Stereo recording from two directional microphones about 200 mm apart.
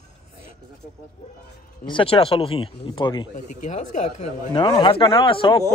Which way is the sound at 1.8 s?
25° left (ahead or behind).